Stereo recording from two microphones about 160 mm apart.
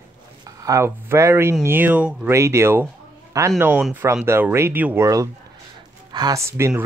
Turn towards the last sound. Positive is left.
turn(degrees=-15)  # may be behind; listen again after turning